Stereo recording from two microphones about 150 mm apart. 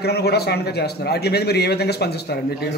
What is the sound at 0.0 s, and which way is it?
A man's voice, 90° left.